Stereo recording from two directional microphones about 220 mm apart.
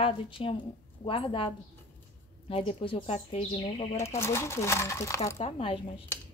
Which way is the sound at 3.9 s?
10° left (ahead or behind).